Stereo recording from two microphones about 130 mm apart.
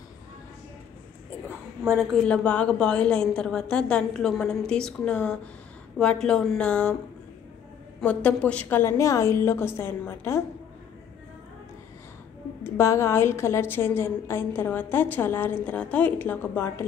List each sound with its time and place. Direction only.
1.9 s a woman's voice: 10° left (ahead or behind)
8.0 s a woman's voice: 10° left (ahead or behind)
12.6 s a woman's voice: 20° left (ahead or behind)